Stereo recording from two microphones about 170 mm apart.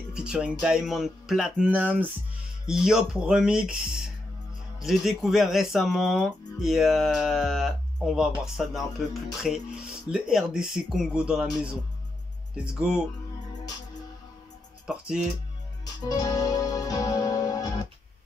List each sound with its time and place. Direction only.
0.1 s speech: 5° right (ahead or behind)
14.9 s speech: 5° right (ahead or behind)
16.0 s music: 25° left (ahead or behind)